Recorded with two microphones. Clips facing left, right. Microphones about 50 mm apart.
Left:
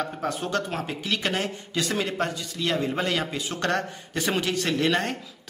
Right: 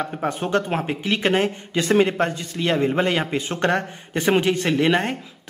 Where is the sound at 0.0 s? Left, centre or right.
Right.